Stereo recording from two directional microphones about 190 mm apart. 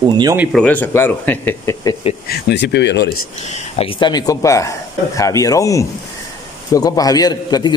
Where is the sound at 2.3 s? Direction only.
60° left (ahead or behind).